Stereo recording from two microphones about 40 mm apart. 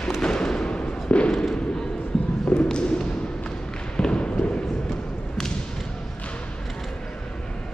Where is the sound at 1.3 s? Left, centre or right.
Centre.